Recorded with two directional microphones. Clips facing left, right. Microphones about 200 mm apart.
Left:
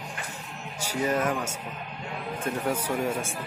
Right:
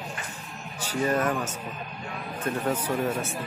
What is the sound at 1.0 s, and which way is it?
A man's voice, 10° left (ahead or behind).